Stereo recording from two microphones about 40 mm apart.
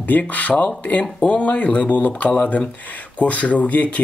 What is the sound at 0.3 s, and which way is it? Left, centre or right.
Speech, left.